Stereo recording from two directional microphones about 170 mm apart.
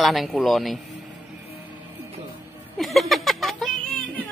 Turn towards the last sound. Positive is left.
turn(degrees=0)  # may be behind; listen again after turning